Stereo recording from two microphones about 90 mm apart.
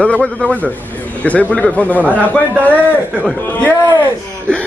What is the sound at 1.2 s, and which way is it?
Speech, 15° left (ahead or behind).